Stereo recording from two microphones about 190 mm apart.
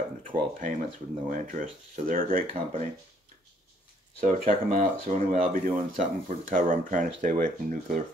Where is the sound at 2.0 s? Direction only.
45° right (ahead or behind).